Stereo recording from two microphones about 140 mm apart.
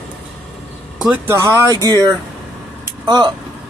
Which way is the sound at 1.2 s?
20° right (ahead or behind).